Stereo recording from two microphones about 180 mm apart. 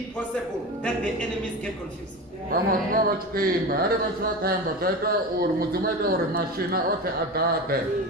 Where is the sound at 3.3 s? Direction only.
55° right (ahead or behind).